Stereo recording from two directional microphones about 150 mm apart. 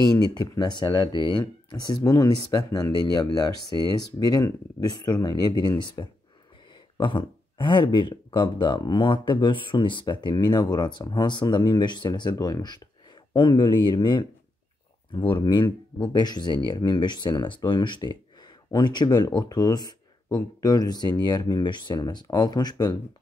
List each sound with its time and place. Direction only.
0.0 s speech: 25° left (ahead or behind)